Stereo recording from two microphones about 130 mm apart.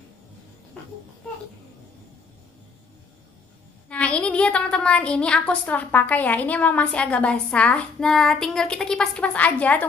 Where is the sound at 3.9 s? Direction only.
10° left (ahead or behind).